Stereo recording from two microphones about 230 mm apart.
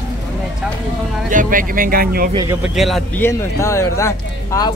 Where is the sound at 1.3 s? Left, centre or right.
Right.